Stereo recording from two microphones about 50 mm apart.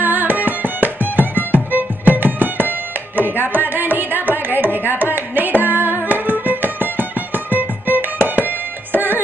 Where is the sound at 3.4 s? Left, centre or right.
Right.